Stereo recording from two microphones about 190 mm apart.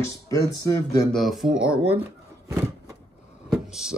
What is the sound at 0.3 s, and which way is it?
Speech, 20° left (ahead or behind).